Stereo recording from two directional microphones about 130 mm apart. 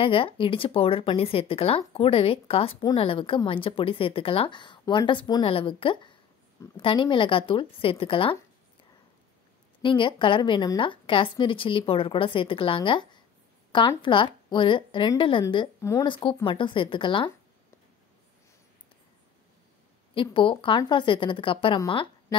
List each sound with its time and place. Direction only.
0.0 s speech: 45° left (ahead or behind)
9.8 s a woman's voice: 40° left (ahead or behind)
20.3 s a woman's voice: 40° left (ahead or behind)